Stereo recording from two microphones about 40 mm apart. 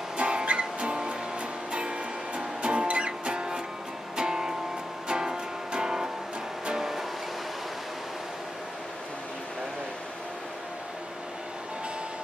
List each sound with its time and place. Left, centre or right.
0.2 s music: right; by 7.1 s centre